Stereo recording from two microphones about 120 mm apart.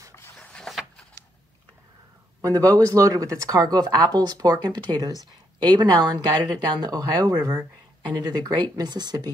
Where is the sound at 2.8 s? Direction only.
30° right (ahead or behind).